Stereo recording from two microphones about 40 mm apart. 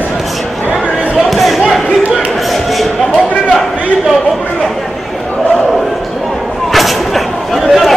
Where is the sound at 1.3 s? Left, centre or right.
Centre.